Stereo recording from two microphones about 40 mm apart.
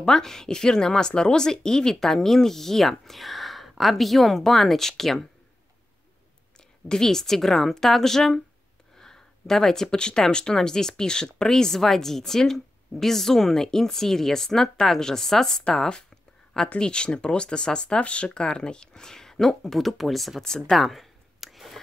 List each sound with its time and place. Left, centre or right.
0.0 s speech: centre
6.9 s speech: centre
8.9 s a sound: centre
10.3 s speech: centre
16.7 s speech: left; by 20.4 s centre
20.4 s speech: centre
20.7 s a sound: centre